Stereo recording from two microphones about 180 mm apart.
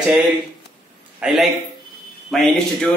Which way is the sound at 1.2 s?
Centre (ahead or behind).